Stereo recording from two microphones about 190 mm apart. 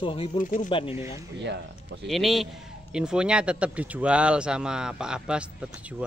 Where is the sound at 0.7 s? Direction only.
30° left (ahead or behind).